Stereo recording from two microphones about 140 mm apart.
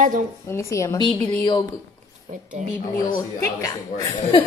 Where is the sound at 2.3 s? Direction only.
65° right (ahead or behind).